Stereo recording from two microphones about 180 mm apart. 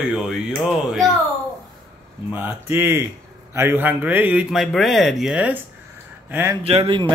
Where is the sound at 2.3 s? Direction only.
10° right (ahead or behind).